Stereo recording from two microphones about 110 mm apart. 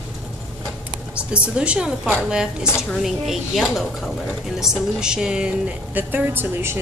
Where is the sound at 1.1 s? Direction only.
10° right (ahead or behind).